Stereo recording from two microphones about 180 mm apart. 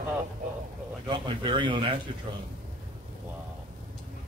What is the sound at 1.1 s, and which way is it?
Speech, 25° right (ahead or behind).